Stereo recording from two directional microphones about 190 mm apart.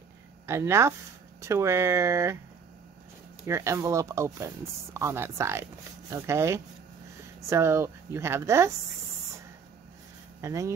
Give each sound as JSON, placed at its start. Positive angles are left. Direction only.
{"t": 0.5, "sound": "speech", "side_deg": -15}
{"t": 3.4, "sound": "speech", "side_deg": -15}
{"t": 10.4, "sound": "speech", "side_deg": -15}